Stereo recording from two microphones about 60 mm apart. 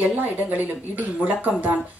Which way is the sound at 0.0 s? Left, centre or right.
Right.